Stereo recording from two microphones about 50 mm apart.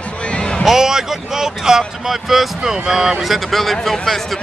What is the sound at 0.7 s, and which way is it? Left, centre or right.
Speech, centre.